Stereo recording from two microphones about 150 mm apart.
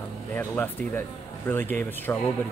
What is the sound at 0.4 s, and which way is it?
Speech, 15° left (ahead or behind).